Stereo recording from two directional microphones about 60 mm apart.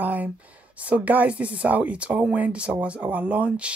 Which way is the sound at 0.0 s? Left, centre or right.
Right.